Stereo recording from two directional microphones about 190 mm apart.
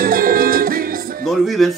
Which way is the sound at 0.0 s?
50° right (ahead or behind).